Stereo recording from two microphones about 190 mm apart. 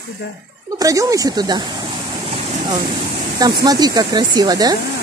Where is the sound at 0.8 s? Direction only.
20° right (ahead or behind).